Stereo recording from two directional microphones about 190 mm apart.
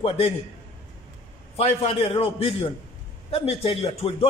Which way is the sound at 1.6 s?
30° left (ahead or behind).